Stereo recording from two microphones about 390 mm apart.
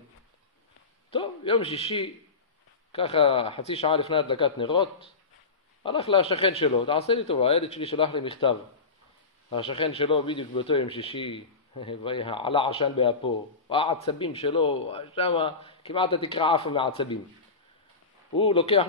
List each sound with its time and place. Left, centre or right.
1.1 s speech: centre
18.4 s speech: centre